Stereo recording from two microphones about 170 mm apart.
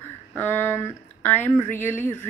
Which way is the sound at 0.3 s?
10° left (ahead or behind).